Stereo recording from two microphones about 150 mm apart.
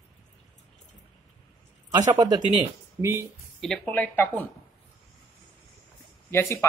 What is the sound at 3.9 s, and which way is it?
Speech, 10° left (ahead or behind).